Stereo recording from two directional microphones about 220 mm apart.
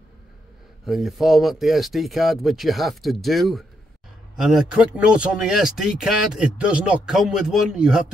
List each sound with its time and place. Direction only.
0.8 s speech: centre (ahead or behind)